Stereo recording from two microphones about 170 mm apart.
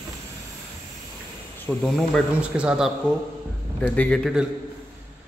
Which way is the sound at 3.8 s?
10° left (ahead or behind).